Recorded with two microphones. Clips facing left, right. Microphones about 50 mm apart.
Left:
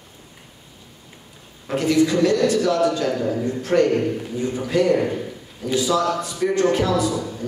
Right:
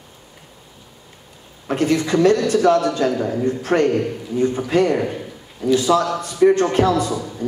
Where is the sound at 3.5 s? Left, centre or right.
Right.